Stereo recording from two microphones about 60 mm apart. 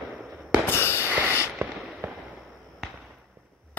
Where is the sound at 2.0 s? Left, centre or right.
Right.